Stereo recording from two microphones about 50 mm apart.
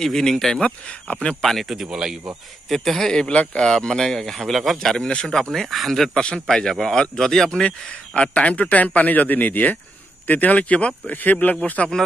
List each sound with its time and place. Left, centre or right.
0.0 s speech: centre
0.6 s speech: left
1.4 s speech: centre
2.7 s speech: centre
4.9 s speech: centre
6.1 s speech: left
6.4 s speech: centre
7.6 s a man's voice: left